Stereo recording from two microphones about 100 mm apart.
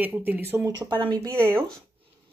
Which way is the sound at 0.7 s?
45° right (ahead or behind).